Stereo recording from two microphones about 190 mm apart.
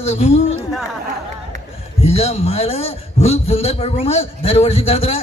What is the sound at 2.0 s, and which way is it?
A man's voice, 35° left (ahead or behind).